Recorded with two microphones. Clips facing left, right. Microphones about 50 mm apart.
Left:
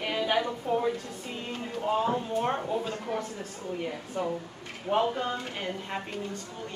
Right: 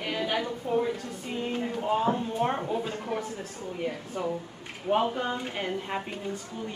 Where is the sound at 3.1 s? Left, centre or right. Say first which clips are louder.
Right 1 dB; right.